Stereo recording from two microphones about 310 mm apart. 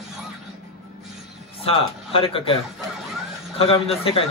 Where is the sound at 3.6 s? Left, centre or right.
Centre.